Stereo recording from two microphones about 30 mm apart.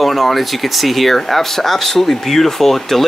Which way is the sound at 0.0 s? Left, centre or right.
Centre.